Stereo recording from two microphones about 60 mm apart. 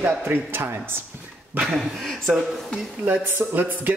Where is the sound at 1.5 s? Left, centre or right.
Right.